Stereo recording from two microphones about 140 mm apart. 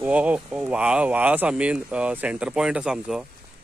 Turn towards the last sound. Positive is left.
turn(degrees=-5)  # may be behind; listen again after turning